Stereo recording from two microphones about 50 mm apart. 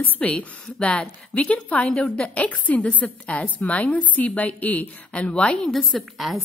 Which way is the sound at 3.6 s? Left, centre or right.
Left.